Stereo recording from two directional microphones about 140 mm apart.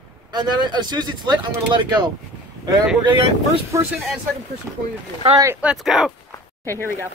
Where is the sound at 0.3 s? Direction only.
30° right (ahead or behind).